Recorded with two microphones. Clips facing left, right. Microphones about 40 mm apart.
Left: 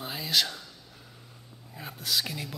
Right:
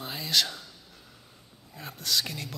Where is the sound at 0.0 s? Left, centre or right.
Centre.